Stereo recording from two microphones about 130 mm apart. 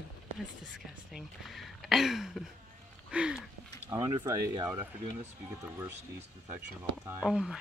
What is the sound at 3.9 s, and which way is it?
Speech, 20° right (ahead or behind).